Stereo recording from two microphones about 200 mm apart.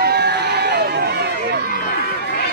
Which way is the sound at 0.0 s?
55° right (ahead or behind).